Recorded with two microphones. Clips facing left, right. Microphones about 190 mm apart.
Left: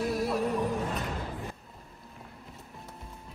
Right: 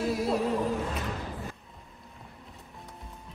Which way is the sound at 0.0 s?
Centre (ahead or behind).